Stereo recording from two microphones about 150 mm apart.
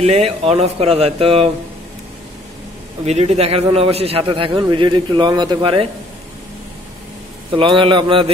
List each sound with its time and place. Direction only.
0.0 s a man's voice: 40° right (ahead or behind)
3.1 s a man's voice: 45° right (ahead or behind)
7.5 s a man's voice: 35° right (ahead or behind)